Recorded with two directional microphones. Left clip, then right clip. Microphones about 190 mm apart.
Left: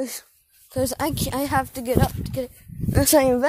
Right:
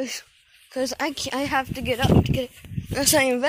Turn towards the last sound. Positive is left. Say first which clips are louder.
# left 3 dB
turn(degrees=35)  # may be behind; listen again after turning